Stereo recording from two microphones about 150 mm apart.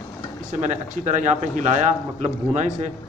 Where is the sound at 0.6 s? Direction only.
55° right (ahead or behind).